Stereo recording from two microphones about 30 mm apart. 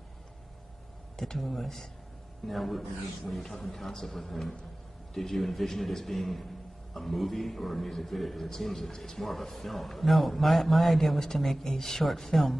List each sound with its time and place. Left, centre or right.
1.1 s speech: centre
1.4 s a man's voice: centre
11.1 s speech: centre